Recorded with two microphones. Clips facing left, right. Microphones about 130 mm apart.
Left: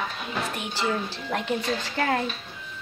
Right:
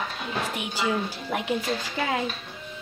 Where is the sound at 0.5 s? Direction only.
10° right (ahead or behind).